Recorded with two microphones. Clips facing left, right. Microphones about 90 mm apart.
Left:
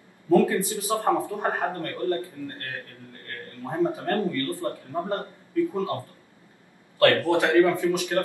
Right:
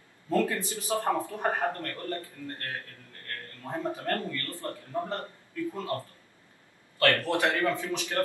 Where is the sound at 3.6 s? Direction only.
20° left (ahead or behind).